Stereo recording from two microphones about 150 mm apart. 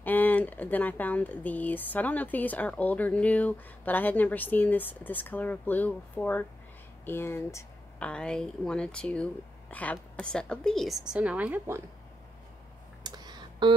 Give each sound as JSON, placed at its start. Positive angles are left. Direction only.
{"t": 0.0, "sound": "a woman's voice", "side_deg": 10}
{"t": 13.0, "sound": "clicking", "side_deg": -25}